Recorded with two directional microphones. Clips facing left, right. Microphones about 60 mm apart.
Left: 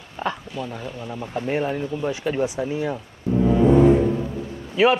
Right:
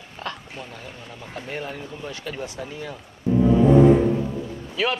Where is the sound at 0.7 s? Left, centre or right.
Left.